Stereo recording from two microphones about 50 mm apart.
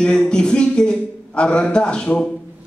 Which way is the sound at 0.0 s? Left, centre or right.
Centre.